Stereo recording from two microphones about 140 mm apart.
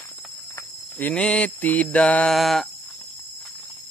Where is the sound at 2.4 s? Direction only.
Centre (ahead or behind).